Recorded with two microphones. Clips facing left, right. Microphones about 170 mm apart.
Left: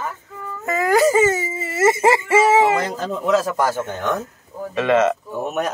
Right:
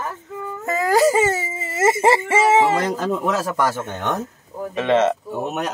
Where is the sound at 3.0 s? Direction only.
70° right (ahead or behind).